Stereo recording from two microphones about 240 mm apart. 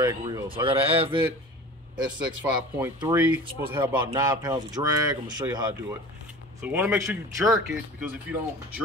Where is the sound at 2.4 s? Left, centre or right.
Centre.